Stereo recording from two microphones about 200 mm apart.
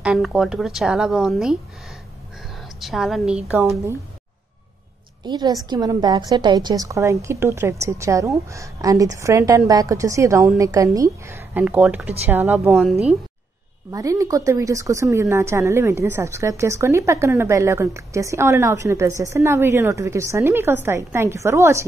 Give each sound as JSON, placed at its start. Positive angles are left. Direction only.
{"t": 0.0, "sound": "a woman's voice", "side_deg": -5}
{"t": 5.2, "sound": "speech", "side_deg": -20}
{"t": 13.9, "sound": "speech", "side_deg": -15}